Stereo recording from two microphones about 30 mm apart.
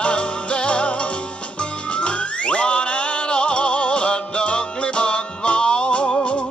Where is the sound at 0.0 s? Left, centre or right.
Left.